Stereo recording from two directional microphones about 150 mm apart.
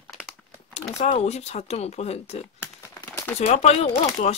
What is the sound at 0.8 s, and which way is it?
Speech, 45° left (ahead or behind).